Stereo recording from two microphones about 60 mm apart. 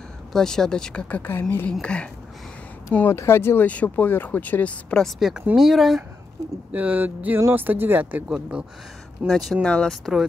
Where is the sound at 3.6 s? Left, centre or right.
Left.